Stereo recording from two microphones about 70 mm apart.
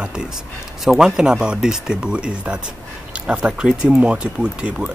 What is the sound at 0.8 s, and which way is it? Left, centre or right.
Speech, centre.